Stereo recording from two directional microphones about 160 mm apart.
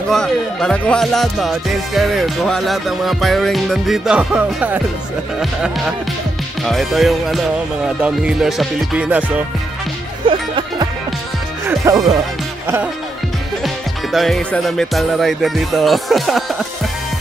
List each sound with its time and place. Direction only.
0.1 s speech: 5° left (ahead or behind)
10.2 s music: 30° right (ahead or behind)
11.6 s speech: 20° right (ahead or behind)
14.1 s speech: centre (ahead or behind)